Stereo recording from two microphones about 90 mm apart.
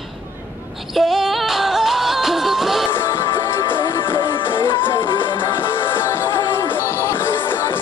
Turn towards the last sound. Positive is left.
turn(degrees=25)  # may be behind; listen again after turning